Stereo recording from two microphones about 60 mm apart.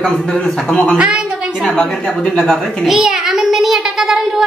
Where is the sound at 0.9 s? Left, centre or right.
Centre.